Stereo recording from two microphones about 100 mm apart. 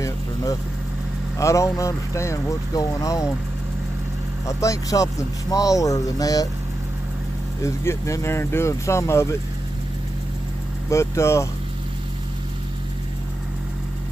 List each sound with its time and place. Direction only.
1.4 s speech: 30° left (ahead or behind)
4.5 s speech: 35° left (ahead or behind)
7.6 s speech: 30° left (ahead or behind)
10.9 s speech: 30° left (ahead or behind)